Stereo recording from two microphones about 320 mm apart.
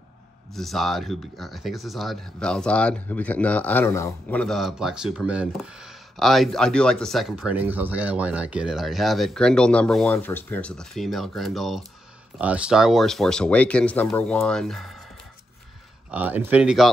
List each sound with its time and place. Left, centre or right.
0.6 s speech: centre
16.1 s speech: centre